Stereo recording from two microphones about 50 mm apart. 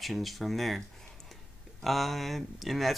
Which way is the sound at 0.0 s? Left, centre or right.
Centre.